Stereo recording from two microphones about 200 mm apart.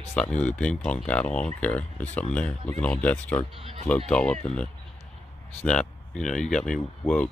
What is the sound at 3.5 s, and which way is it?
Speech, 30° right (ahead or behind).